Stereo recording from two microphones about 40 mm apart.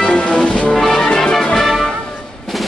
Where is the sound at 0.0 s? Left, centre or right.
Left.